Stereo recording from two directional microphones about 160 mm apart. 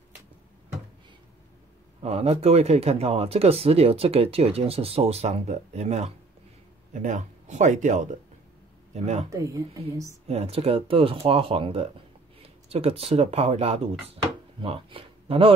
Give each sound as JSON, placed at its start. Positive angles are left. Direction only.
{"t": 2.0, "sound": "speech", "side_deg": -40}
{"t": 9.3, "sound": "speech", "side_deg": -20}
{"t": 10.2, "sound": "speech", "side_deg": -40}